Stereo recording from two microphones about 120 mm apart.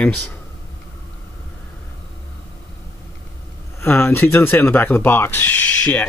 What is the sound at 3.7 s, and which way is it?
Speech, 20° left (ahead or behind).